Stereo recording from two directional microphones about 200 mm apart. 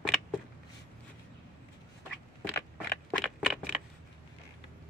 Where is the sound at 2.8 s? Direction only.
Centre (ahead or behind).